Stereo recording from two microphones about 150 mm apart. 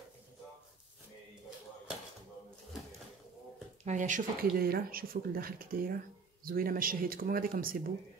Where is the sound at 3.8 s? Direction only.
55° right (ahead or behind); by 7.7 s 70° right (ahead or behind).